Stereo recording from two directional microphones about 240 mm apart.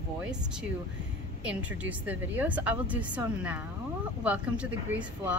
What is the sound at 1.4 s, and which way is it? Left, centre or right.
A woman's voice, centre.